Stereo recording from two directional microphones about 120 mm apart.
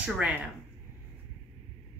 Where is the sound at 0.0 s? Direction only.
10° right (ahead or behind).